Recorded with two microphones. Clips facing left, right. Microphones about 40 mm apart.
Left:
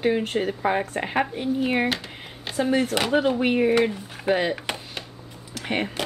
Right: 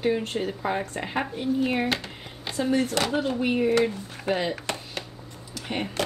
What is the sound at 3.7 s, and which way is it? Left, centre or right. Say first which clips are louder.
Speech: even; left.